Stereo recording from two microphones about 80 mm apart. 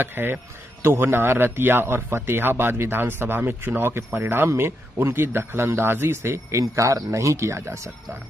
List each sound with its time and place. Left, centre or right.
0.0 s speech: right